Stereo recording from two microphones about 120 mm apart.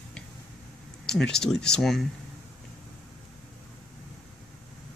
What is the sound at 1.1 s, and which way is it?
Speech, 5° left (ahead or behind).